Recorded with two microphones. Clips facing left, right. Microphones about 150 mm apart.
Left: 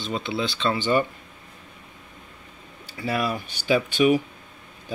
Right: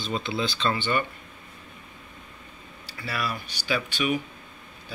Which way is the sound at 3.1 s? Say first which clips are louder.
Left 6 dB; 45° left (ahead or behind).